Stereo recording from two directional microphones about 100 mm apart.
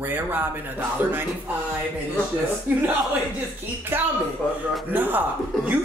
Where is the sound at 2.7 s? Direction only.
20° right (ahead or behind).